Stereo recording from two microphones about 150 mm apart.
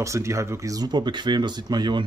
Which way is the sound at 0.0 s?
20° right (ahead or behind).